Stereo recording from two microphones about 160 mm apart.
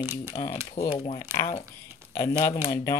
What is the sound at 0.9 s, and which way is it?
Speech, 40° left (ahead or behind).